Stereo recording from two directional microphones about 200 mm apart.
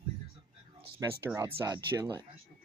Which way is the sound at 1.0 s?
15° right (ahead or behind).